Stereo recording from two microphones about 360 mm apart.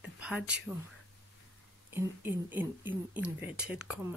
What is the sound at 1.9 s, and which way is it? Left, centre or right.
Speech, centre.